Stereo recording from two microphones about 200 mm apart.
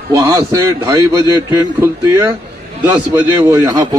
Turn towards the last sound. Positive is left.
turn(degrees=-15)  # may be behind; listen again after turning